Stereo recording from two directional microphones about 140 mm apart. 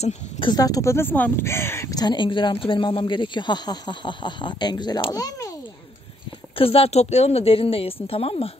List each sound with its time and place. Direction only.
0.5 s speech: 25° left (ahead or behind)
6.6 s a woman's voice: 45° left (ahead or behind)